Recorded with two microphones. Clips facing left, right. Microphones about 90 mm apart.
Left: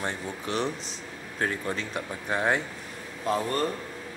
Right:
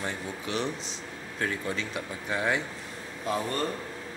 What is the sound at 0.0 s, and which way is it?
Speech, 45° left (ahead or behind).